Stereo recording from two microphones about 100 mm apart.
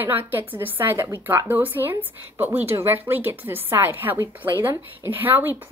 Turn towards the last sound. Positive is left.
turn(degrees=-20)  # may be behind; listen again after turning